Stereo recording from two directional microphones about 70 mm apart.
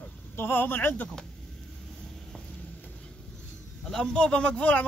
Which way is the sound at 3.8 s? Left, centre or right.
Centre.